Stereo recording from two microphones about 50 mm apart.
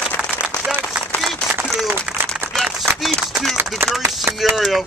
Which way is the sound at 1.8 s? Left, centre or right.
Right.